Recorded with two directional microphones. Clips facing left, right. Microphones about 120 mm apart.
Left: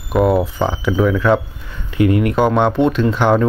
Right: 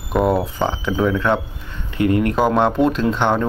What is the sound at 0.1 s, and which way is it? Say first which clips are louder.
Speech: left 3 dB; centre (ahead or behind).